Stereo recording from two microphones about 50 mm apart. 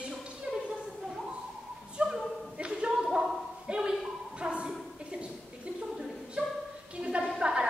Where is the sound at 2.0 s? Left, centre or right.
Right.